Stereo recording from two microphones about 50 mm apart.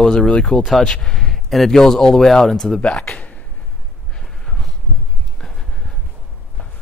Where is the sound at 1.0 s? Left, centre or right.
Centre.